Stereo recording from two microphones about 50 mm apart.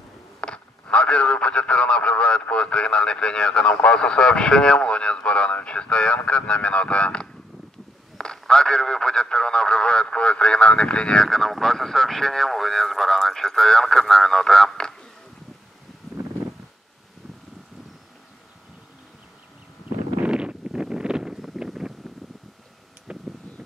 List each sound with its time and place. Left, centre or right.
0.4 s speech: left
11.2 s speech: centre
20.2 s wind noise: centre
23.1 s a sound: centre